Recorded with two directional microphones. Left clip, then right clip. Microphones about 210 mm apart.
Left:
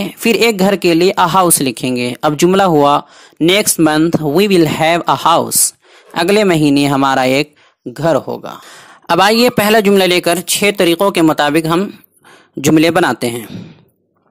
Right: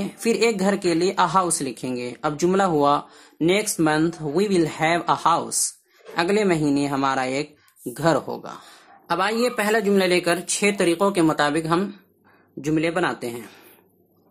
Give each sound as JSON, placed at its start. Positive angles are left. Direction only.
{"t": 0.0, "sound": "speech", "side_deg": 35}
{"t": 7.9, "sound": "speech", "side_deg": 25}
{"t": 9.0, "sound": "speech", "side_deg": 45}